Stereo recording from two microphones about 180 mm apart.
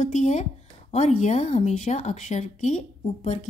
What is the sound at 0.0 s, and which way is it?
A woman's voice, 40° left (ahead or behind).